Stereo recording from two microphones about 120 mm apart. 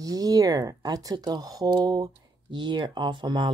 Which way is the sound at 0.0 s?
30° right (ahead or behind).